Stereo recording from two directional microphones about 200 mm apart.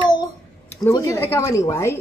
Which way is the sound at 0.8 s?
15° left (ahead or behind).